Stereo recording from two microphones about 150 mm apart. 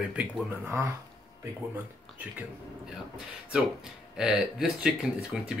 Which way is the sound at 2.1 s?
10° right (ahead or behind).